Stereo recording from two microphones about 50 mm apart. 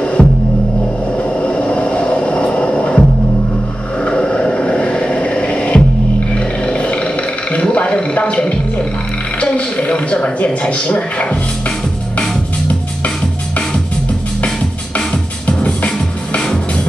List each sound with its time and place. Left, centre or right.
0.0 s music: left
1.1 s vehicle: left
4.0 s a sound: left
6.3 s music: left
7.5 s a sound: left
12.2 s music: left
15.0 s music: left